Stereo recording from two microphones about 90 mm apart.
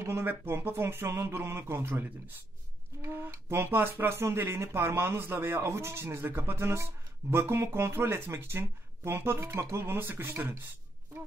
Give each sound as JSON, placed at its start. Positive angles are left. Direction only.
{"t": 0.0, "sound": "speech", "side_deg": -25}